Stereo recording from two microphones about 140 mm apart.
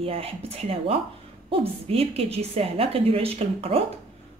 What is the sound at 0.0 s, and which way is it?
A woman's voice, 45° right (ahead or behind).